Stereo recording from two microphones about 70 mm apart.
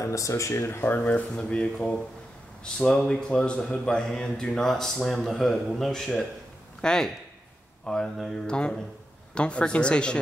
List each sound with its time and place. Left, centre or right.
0.0 s speech: left
1.3 s a man's voice: centre